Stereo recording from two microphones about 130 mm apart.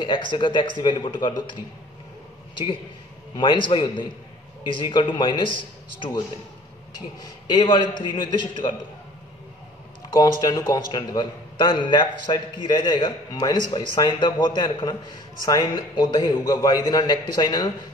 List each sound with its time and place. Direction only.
0.0 s a man's voice: 40° left (ahead or behind)
3.3 s a man's voice: 40° left (ahead or behind)
7.2 s a man's voice: 35° left (ahead or behind)
10.4 s a man's voice: 30° left (ahead or behind)